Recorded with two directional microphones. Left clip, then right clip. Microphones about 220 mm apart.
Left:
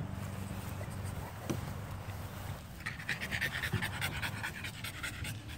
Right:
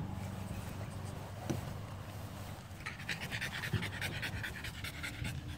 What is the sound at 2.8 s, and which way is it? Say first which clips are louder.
Pant: left 3 dB; 20° left (ahead or behind).